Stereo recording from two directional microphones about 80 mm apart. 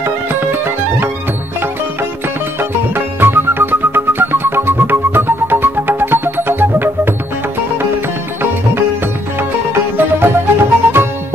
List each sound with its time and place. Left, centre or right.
0.0 s music: right
3.2 s music: right
9.9 s music: right